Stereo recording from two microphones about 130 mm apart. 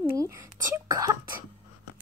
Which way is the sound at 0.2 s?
25° right (ahead or behind).